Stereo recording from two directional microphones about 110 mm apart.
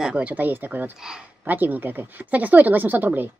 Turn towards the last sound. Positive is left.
turn(degrees=-15)  # may be behind; listen again after turning